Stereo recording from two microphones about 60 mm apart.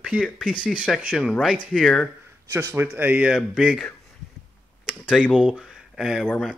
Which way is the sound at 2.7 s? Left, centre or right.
Right.